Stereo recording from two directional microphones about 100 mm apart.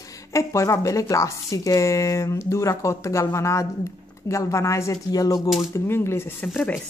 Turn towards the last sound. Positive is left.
turn(degrees=15)  # may be behind; listen again after turning